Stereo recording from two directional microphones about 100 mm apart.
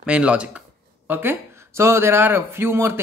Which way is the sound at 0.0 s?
10° right (ahead or behind).